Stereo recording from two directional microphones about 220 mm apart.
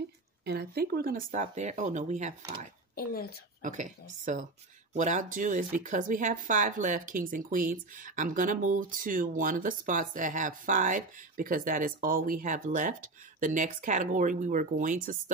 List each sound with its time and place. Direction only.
0.5 s speech: 45° right (ahead or behind)
3.0 s a woman's voice: 40° left (ahead or behind)
3.6 s speech: 35° right (ahead or behind)